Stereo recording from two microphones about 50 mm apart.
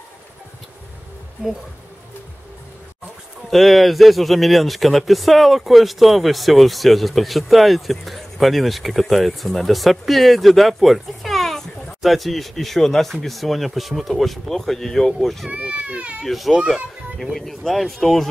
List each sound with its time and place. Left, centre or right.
3.4 s speech: centre
15.5 s speech: right
16.3 s speech: centre